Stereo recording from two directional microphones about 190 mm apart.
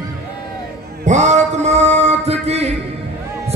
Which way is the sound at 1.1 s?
40° right (ahead or behind).